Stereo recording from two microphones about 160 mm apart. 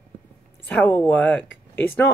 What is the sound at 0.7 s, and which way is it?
Speech, 10° left (ahead or behind).